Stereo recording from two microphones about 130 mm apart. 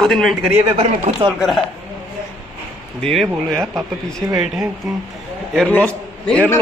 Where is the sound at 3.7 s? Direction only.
25° right (ahead or behind).